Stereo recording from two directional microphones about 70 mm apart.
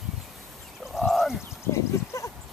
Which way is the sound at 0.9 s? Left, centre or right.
Centre.